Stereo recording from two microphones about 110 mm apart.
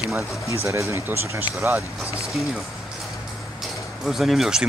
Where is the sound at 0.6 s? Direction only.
25° right (ahead or behind).